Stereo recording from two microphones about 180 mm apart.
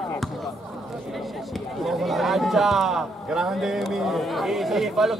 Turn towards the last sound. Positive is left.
turn(degrees=0)  # may be behind; listen again after turning